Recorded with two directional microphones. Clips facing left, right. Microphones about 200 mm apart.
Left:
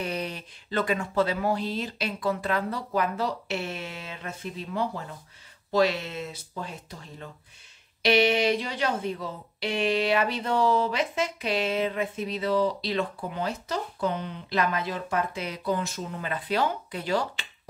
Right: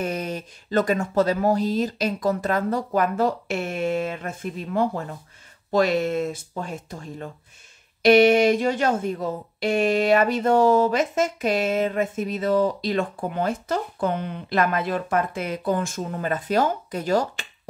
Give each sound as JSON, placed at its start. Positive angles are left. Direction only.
{"t": 0.0, "sound": "speech", "side_deg": -45}